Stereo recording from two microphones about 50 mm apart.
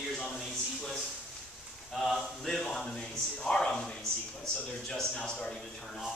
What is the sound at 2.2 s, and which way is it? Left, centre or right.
A man's voice, centre.